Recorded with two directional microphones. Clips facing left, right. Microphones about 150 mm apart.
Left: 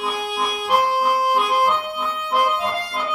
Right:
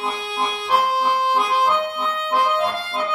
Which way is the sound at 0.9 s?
10° left (ahead or behind).